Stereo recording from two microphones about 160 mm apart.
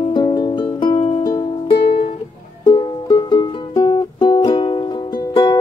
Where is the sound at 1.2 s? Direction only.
20° left (ahead or behind).